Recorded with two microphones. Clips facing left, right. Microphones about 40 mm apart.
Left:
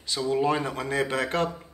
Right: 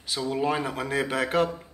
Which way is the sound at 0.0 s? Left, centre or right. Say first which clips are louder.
Left 2 dB; centre.